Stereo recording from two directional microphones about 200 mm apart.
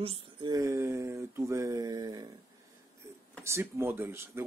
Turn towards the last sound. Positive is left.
turn(degrees=-10)  # may be behind; listen again after turning